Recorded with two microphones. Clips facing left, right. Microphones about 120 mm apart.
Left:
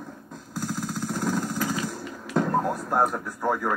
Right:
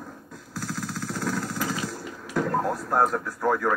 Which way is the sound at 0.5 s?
15° left (ahead or behind).